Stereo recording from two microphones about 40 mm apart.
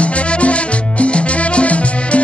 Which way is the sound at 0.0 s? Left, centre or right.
Left.